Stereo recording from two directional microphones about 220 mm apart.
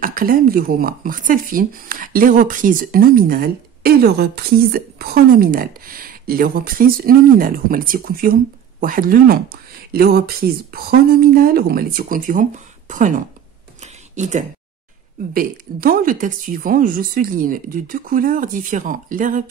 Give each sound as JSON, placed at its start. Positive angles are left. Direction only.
{"t": 0.0, "sound": "speech", "side_deg": -40}